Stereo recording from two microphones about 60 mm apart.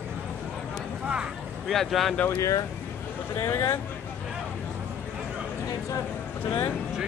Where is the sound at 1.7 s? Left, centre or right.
Centre.